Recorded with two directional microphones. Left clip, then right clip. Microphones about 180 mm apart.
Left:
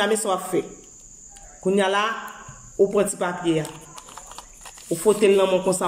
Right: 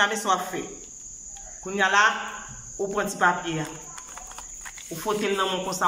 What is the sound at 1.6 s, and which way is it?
A man's voice, 25° left (ahead or behind).